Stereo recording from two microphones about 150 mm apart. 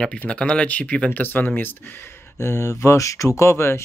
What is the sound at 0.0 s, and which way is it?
Speech, 5° left (ahead or behind).